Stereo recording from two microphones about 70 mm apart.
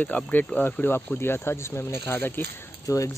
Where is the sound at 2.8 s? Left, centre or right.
Left.